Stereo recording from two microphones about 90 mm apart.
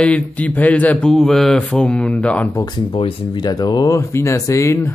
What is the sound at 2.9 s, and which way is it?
Speech, 90° left.